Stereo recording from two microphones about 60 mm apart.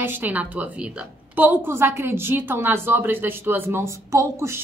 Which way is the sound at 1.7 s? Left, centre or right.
Right.